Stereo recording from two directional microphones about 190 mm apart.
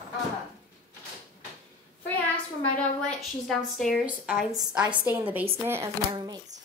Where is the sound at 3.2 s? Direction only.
Centre (ahead or behind); by 6.4 s 20° right (ahead or behind).